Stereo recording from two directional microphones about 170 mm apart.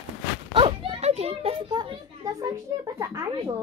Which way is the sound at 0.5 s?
30° right (ahead or behind).